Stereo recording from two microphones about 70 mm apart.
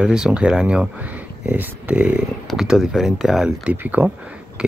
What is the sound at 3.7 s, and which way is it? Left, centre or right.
Speech, right.